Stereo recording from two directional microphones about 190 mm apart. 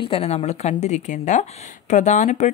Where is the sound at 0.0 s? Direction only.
30° left (ahead or behind).